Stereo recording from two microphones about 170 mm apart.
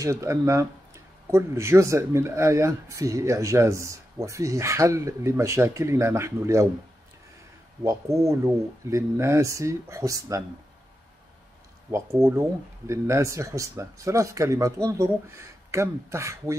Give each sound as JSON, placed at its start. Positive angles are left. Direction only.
{"t": 0.0, "sound": "speech", "side_deg": -20}
{"t": 7.8, "sound": "speech", "side_deg": -15}
{"t": 11.9, "sound": "speech", "side_deg": -15}